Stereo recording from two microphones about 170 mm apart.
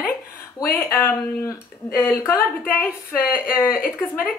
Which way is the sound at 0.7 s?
10° left (ahead or behind).